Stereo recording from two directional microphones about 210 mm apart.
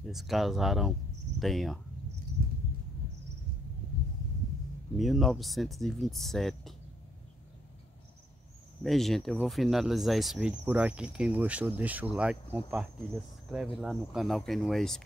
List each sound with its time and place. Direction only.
0.0 s speech: centre (ahead or behind)
2.4 s a sound: 45° right (ahead or behind)
4.9 s speech: centre (ahead or behind)
8.8 s speech: centre (ahead or behind)